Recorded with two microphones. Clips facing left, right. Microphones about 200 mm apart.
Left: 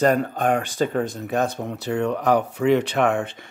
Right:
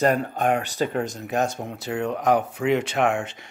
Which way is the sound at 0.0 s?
45° left (ahead or behind).